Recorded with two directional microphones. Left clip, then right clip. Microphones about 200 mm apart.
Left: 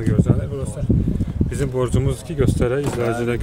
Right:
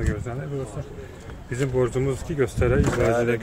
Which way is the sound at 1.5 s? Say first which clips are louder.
Even; 10° left (ahead or behind).